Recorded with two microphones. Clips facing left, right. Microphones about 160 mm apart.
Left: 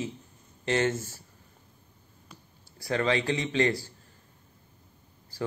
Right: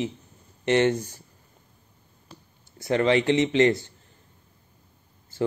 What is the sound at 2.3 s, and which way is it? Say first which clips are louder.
Speech: right 4 dB; 25° right (ahead or behind).